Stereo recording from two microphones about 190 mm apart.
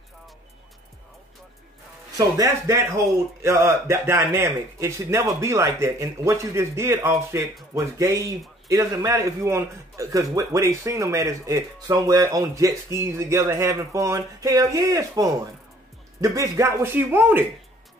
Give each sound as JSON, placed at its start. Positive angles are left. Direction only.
{"t": 2.1, "sound": "a man's voice", "side_deg": -15}